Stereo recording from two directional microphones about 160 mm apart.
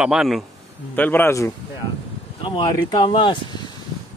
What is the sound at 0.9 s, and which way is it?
Speech, 10° left (ahead or behind).